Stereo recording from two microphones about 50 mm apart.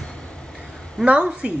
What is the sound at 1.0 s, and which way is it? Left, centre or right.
Speech, right.